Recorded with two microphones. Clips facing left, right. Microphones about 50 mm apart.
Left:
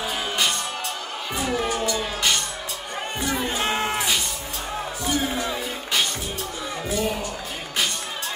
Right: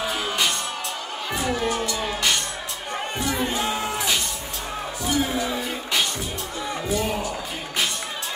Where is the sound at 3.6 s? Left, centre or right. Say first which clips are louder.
Left 2 dB; left.